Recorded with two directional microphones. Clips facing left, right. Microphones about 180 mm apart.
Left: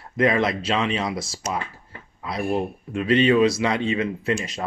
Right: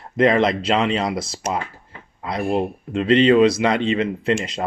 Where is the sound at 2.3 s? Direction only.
25° right (ahead or behind).